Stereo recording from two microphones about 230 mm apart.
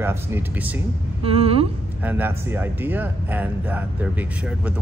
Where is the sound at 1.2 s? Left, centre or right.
Right.